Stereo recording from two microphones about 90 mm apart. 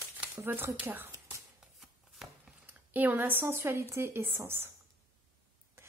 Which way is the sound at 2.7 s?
20° right (ahead or behind).